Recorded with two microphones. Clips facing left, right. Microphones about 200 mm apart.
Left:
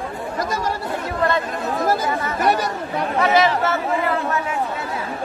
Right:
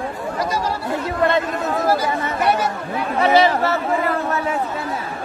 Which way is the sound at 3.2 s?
30° right (ahead or behind).